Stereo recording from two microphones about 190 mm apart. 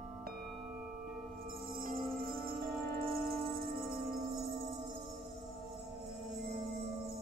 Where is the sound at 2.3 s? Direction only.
50° right (ahead or behind).